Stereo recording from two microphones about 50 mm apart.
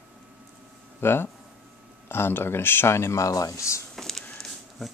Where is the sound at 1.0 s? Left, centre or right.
Left.